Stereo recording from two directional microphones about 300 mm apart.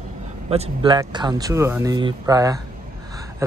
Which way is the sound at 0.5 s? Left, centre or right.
Centre.